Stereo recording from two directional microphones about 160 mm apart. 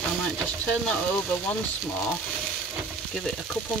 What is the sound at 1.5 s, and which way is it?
Speech, 5° left (ahead or behind).